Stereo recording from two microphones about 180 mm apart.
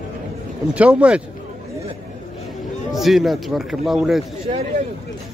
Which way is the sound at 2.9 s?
Centre (ahead or behind).